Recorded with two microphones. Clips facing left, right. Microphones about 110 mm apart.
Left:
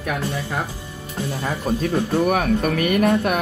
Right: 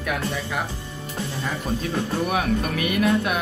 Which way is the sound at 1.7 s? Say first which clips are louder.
Left 6 dB; 50° left (ahead or behind).